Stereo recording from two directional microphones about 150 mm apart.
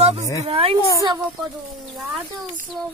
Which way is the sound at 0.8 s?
20° left (ahead or behind).